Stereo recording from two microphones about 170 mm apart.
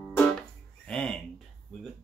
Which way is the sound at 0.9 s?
5° left (ahead or behind).